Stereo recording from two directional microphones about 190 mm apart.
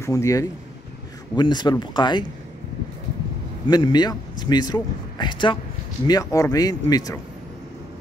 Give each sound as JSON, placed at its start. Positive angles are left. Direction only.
{"t": 0.0, "sound": "speech", "side_deg": 15}
{"t": 3.6, "sound": "speech", "side_deg": 20}